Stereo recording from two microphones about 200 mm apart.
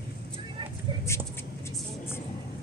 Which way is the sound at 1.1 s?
15° left (ahead or behind).